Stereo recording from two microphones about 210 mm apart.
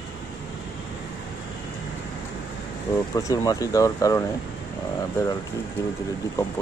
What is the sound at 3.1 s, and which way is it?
Speech, 15° left (ahead or behind).